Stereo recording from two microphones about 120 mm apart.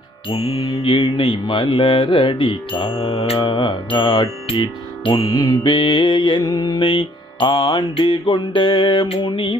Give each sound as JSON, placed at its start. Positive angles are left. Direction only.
{"t": 0.3, "sound": "mantra", "side_deg": 40}
{"t": 6.8, "sound": "mantra", "side_deg": 45}